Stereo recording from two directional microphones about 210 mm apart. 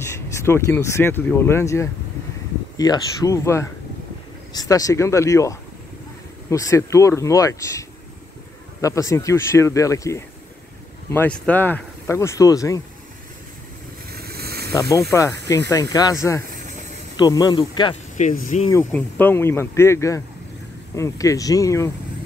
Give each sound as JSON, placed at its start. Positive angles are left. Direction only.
{"t": 0.0, "sound": "speech", "side_deg": 15}
{"t": 8.8, "sound": "speech", "side_deg": 15}
{"t": 14.1, "sound": "a sound", "side_deg": -45}
{"t": 14.7, "sound": "speech", "side_deg": 15}
{"t": 18.1, "sound": "speech", "side_deg": 35}
{"t": 18.9, "sound": "speech", "side_deg": 10}